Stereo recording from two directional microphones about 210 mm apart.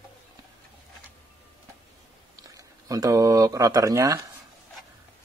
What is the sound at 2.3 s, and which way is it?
Speech, 15° right (ahead or behind).